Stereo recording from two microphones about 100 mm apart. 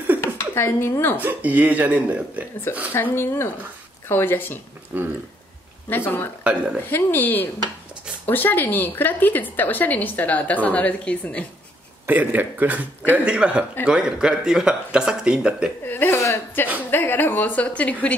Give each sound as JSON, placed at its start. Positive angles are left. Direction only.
{"t": 0.2, "sound": "a sound", "side_deg": 25}
{"t": 1.1, "sound": "speech", "side_deg": -15}
{"t": 2.9, "sound": "a woman's voice", "side_deg": 25}
{"t": 4.9, "sound": "speech", "side_deg": -20}
{"t": 5.9, "sound": "a woman's voice", "side_deg": 20}
{"t": 6.4, "sound": "speech", "side_deg": -10}
{"t": 6.9, "sound": "a woman's voice", "side_deg": 20}
{"t": 12.1, "sound": "speech", "side_deg": -15}
{"t": 15.8, "sound": "a woman's voice", "side_deg": 20}